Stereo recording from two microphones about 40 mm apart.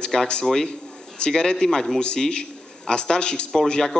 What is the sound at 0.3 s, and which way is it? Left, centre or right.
A man's voice, centre.